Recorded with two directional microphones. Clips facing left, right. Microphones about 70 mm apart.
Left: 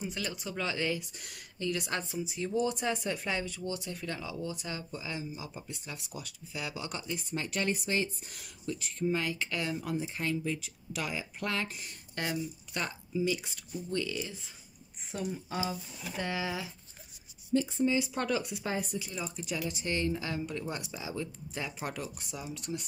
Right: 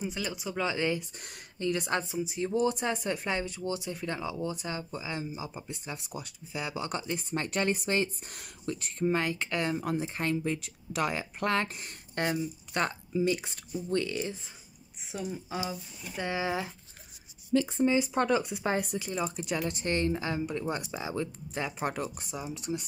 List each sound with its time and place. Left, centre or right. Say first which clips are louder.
0.0 s speech: right 3 dB; centre
1.2 s speech: right 3 dB; right
2.0 s speech: right 3 dB; centre
2.3 s speech: right 3 dB; right
15.0 s speech: even; centre
16.2 s speech: right 4 dB; right
17.5 s speech: right 2 dB; right
17.8 s speech: right 4 dB; right
18.9 s speech: right 5 dB; right
20.9 s speech: right 4 dB; right; by 22.8 s centre